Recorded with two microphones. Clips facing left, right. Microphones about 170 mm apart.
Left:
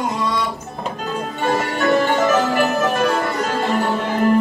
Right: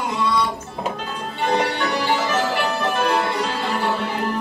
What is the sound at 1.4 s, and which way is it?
Music, 50° left (ahead or behind).